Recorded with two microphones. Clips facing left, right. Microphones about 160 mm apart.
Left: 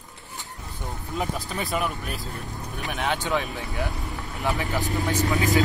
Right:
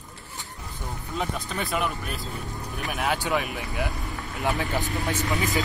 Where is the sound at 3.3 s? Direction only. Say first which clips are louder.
Even; 15° right (ahead or behind).